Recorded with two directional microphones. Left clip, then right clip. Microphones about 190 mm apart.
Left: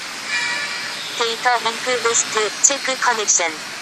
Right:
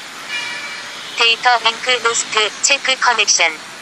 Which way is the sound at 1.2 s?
30° right (ahead or behind).